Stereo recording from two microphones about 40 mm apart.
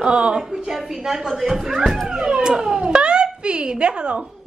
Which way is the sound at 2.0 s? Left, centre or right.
Centre.